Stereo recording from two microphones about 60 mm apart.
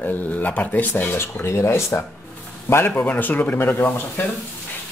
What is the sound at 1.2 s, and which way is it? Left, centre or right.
Speech, left.